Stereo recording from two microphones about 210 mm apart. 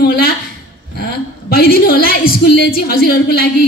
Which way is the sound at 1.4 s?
45° left (ahead or behind).